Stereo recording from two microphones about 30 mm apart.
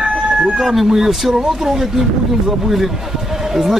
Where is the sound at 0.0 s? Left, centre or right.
Right.